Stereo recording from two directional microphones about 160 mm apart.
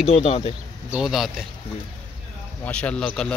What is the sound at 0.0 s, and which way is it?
Speech, 40° left (ahead or behind).